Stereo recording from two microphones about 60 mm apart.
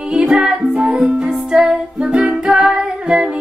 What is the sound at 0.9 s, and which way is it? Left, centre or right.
Music, right.